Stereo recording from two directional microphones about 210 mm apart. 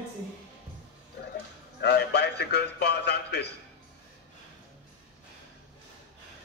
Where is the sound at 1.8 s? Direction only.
55° left (ahead or behind).